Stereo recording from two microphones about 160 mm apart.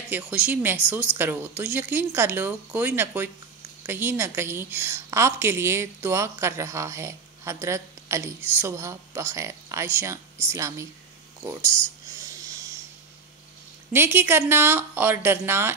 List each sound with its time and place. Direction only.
0.1 s a woman's voice: 10° right (ahead or behind)
12.2 s a sound: 20° right (ahead or behind)
13.9 s a woman's voice: 15° right (ahead or behind)